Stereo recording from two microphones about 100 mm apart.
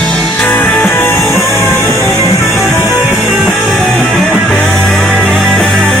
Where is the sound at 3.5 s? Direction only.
5° left (ahead or behind).